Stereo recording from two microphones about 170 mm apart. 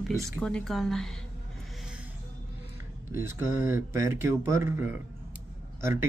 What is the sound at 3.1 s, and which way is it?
A man's voice, 15° right (ahead or behind).